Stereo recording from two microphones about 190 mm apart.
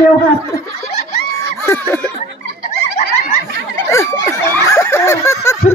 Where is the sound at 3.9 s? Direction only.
15° left (ahead or behind).